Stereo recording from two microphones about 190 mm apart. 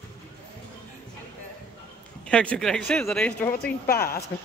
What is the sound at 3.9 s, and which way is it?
Speech, 50° left (ahead or behind).